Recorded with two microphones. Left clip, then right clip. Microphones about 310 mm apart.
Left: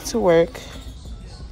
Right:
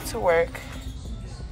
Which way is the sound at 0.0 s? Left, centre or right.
Left.